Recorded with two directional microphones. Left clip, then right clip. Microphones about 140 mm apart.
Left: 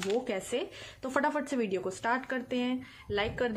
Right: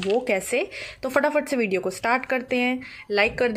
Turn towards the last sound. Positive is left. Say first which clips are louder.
# right 10 dB
turn(degrees=-20)  # may be behind; listen again after turning